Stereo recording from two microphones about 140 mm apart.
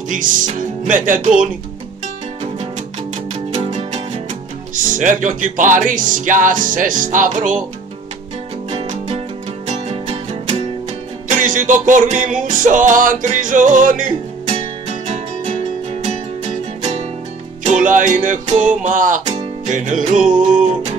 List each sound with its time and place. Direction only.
0.1 s music: 70° right (ahead or behind)
3.3 s music: 50° right (ahead or behind)
4.7 s music: 70° right (ahead or behind)
8.6 s music: 55° right (ahead or behind)
11.2 s music: 65° right (ahead or behind)
14.4 s music: 45° right (ahead or behind)
17.6 s music: 65° right (ahead or behind)
19.2 s music: 50° right (ahead or behind)